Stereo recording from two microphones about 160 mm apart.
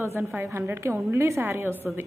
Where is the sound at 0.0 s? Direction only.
15° right (ahead or behind).